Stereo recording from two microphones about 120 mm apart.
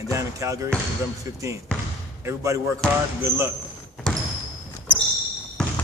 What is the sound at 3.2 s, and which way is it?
Speech, 25° right (ahead or behind).